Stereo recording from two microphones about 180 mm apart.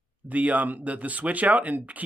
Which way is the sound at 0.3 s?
10° right (ahead or behind).